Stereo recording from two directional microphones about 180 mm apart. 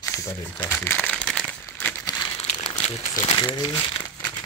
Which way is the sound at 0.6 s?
10° left (ahead or behind).